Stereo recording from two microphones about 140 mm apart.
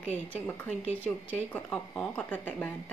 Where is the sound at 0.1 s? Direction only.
15° left (ahead or behind).